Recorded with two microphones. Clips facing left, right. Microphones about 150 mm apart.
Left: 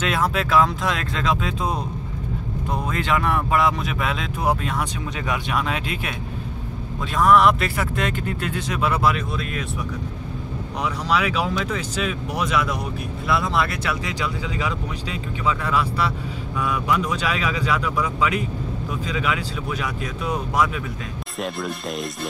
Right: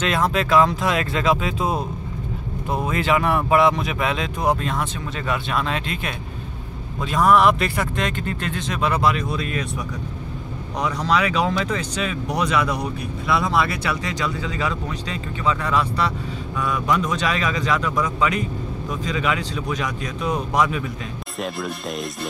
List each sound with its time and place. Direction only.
0.0 s speech: 5° left (ahead or behind)
10.8 s speech: 5° left (ahead or behind)